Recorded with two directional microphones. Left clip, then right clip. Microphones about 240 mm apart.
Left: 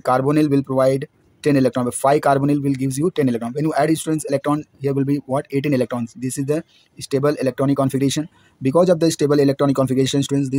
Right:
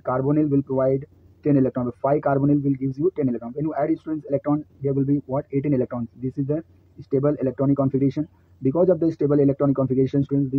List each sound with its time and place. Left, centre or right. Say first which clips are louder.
0.0 s speech: left 5 dB; left